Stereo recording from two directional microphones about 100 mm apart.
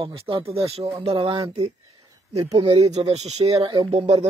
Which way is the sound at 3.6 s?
60° right (ahead or behind).